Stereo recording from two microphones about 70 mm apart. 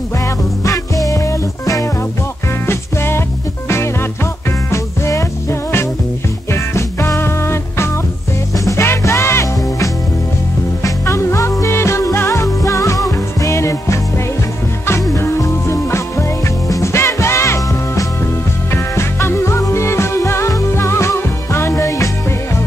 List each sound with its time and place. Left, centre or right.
1.0 s music: left
2.6 s music: left